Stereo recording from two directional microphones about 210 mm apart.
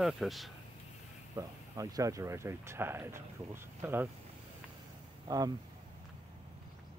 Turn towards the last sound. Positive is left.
turn(degrees=-20)  # may be behind; listen again after turning